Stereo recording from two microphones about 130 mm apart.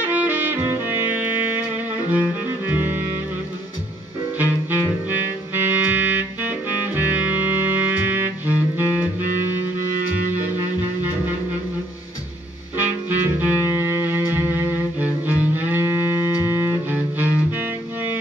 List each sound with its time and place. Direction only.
0.0 s music: 10° right (ahead or behind)
4.4 s music: 15° right (ahead or behind)
12.7 s music: 15° right (ahead or behind)